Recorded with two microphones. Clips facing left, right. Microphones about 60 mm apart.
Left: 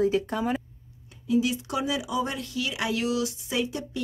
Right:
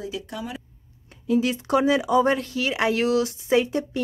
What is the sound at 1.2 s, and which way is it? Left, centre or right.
Speech, right.